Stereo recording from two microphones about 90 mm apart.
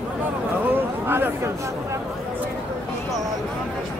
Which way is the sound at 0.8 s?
25° right (ahead or behind).